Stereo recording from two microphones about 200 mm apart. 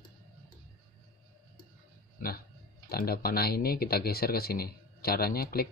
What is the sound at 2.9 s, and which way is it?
Speech, 50° left (ahead or behind).